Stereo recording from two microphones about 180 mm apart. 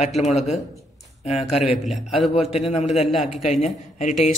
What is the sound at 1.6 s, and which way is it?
Speech, centre (ahead or behind).